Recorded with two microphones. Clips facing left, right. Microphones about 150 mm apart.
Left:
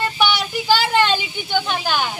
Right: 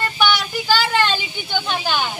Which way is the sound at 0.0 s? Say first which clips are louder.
Even; 25° left (ahead or behind).